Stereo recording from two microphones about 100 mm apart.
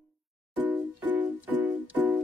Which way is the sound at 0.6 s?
20° right (ahead or behind).